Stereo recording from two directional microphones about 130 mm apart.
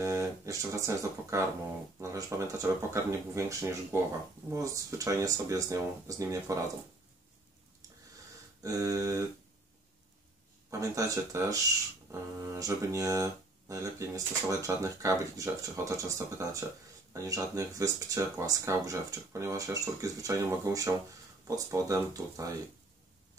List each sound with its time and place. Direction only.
0.0 s speech: 25° right (ahead or behind)
8.6 s speech: 25° right (ahead or behind)
10.7 s speech: 25° right (ahead or behind)